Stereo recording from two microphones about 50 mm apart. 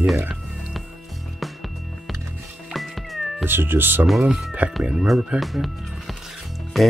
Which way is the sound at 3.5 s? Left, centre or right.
Right.